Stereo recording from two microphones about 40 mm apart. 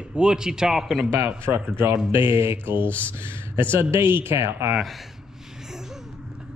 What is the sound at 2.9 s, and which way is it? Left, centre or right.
Speech, left.